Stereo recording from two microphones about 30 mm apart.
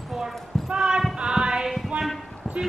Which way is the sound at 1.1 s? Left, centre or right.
Right.